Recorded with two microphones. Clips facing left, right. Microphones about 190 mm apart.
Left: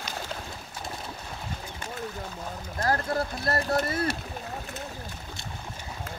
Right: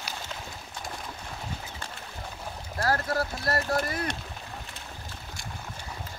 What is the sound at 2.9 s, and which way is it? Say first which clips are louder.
Speech: left 1 dB; 20° left (ahead or behind).